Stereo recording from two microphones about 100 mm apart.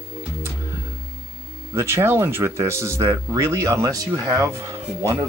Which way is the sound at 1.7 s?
25° right (ahead or behind).